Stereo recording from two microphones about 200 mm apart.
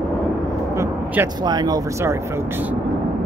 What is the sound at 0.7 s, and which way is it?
Vehicle, 10° right (ahead or behind).